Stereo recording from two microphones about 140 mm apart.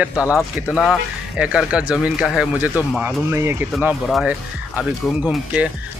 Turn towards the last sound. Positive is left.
turn(degrees=-5)  # may be behind; listen again after turning